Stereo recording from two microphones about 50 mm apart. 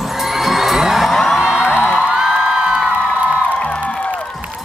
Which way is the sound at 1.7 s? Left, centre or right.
Left.